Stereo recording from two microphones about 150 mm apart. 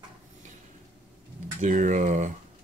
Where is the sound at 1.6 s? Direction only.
60° right (ahead or behind).